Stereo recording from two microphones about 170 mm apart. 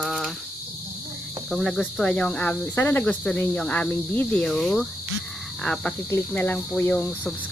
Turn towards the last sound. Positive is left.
turn(degrees=5)  # may be behind; listen again after turning